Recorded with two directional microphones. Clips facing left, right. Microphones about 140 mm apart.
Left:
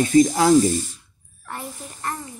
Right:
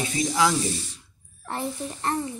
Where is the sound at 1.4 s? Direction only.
30° right (ahead or behind).